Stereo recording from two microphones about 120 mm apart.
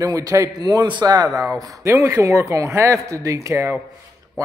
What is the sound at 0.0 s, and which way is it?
A man's voice, 30° right (ahead or behind).